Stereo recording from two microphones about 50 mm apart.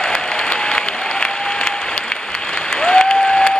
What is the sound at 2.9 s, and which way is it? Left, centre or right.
Applause, centre.